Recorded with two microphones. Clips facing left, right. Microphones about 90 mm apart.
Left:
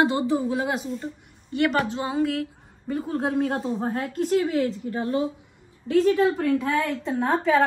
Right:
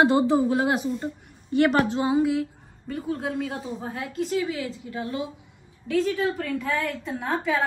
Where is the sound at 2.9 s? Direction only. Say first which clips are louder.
Left 3 dB; 40° left (ahead or behind).